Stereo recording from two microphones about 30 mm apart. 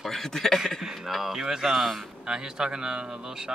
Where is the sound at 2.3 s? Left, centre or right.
Right.